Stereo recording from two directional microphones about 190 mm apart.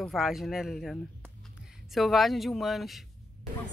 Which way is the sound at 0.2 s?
Centre (ahead or behind).